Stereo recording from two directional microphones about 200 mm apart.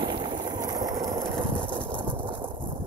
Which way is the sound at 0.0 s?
25° right (ahead or behind).